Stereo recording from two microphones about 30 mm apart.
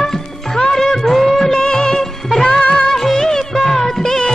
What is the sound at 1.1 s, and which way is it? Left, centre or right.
Music of bollywood, centre.